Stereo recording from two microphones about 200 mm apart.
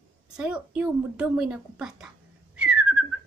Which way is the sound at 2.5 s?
5° right (ahead or behind).